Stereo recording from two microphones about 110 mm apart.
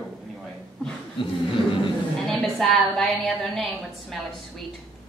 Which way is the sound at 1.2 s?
50° left (ahead or behind).